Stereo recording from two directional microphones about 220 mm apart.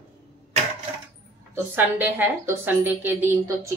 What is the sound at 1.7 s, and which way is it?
A woman's voice, 10° right (ahead or behind).